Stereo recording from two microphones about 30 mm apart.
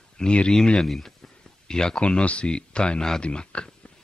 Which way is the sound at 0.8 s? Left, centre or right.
Centre.